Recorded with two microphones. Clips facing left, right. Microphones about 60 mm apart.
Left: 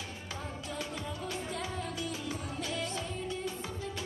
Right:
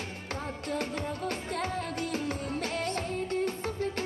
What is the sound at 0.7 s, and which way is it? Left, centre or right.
Music, right.